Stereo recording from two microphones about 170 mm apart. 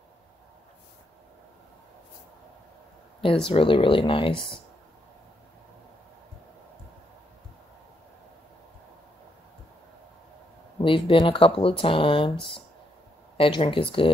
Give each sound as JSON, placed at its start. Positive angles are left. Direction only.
{"t": 3.4, "sound": "speech", "side_deg": 30}
{"t": 10.8, "sound": "speech", "side_deg": 30}
{"t": 13.4, "sound": "speech", "side_deg": 30}